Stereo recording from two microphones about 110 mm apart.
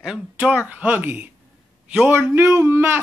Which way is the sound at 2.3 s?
25° right (ahead or behind).